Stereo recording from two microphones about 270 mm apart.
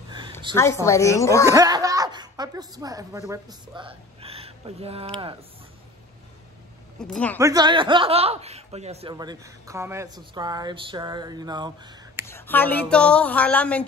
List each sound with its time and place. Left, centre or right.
0.6 s a woman's voice: centre
1.4 s speech: centre
7.0 s speech: centre
7.3 s speech: centre
12.3 s speech: centre